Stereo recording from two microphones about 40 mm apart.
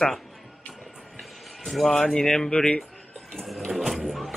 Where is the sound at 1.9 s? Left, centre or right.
Centre.